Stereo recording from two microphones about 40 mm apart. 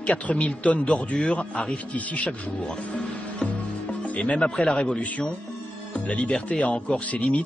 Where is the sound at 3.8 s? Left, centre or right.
Left.